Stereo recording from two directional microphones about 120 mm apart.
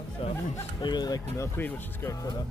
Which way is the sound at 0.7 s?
35° left (ahead or behind).